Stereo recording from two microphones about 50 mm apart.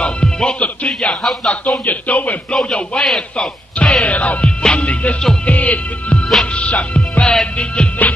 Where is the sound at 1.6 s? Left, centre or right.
Left.